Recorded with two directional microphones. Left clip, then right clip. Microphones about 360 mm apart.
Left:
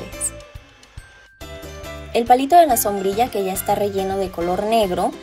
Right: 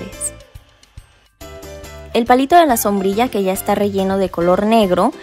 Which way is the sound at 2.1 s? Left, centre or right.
Right.